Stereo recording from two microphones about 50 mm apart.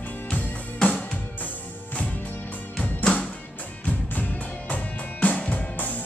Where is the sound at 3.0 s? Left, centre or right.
Left.